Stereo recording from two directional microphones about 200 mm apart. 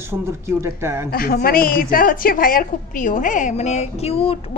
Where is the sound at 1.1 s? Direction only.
50° left (ahead or behind).